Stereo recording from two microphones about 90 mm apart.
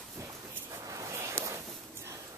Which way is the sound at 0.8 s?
40° right (ahead or behind).